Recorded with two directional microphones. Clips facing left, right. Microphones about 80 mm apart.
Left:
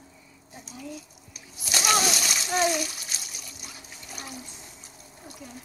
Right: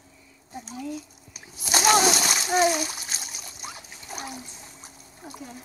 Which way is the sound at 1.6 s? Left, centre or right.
Right.